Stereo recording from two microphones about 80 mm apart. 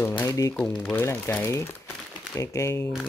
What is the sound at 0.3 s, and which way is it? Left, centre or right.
Speech, left.